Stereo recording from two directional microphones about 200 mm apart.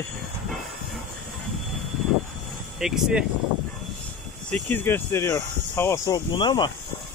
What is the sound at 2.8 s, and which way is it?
Speech, centre (ahead or behind).